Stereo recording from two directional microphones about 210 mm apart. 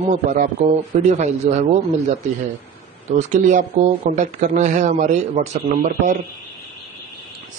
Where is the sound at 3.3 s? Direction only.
35° right (ahead or behind).